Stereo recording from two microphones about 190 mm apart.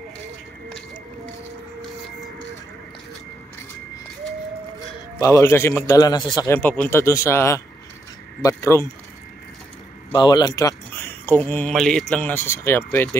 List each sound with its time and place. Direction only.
5.2 s speech: 15° left (ahead or behind)
10.1 s speech: 20° left (ahead or behind)